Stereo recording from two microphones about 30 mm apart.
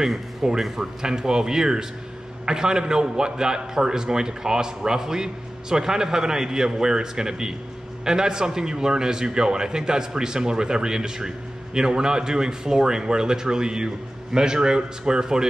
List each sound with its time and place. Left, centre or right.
0.0 s a man's voice: centre
1.0 s a man's voice: right